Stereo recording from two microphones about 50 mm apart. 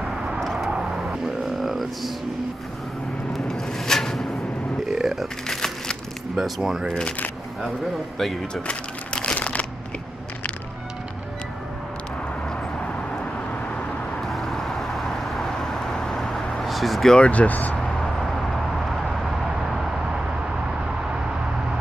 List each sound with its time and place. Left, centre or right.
0.4 s vehicle: centre
0.7 s vehicle: centre
1.6 s music: centre
3.3 s a sound: centre
4.9 s a sound: centre
5.5 s crumpling: centre
6.3 s speech: centre
6.9 s speech: centre
8.2 s speech: centre
8.6 s crumpling: left
14.2 s vehicle: centre
17.2 s speech: left